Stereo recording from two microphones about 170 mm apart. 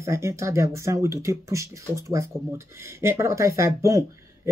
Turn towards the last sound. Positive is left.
turn(degrees=-20)  # may be behind; listen again after turning